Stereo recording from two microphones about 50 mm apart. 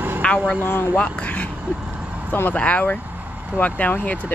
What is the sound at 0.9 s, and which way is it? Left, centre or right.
Speech, left.